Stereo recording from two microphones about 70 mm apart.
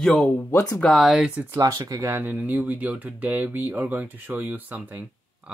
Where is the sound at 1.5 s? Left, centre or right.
Right.